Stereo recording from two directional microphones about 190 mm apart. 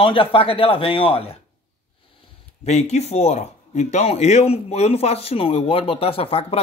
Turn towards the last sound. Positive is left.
turn(degrees=30)  # may be behind; listen again after turning